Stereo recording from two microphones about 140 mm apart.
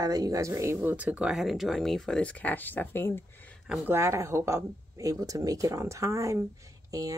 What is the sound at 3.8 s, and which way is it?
Speech, 20° right (ahead or behind).